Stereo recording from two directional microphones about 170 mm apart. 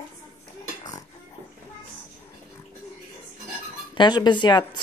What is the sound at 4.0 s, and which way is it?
Speech, 25° left (ahead or behind).